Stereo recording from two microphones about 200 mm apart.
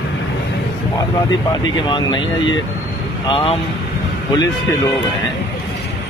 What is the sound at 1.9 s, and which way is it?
Speech, 25° left (ahead or behind).